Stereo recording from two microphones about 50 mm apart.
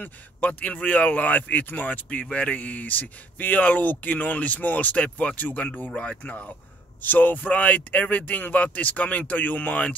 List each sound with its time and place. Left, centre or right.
0.0 s speech: left
5.9 s speech: left
7.0 s speech: left